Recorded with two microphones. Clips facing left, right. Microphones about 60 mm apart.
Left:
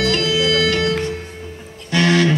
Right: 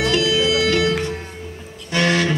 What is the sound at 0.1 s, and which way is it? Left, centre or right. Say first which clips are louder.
Music: even; left.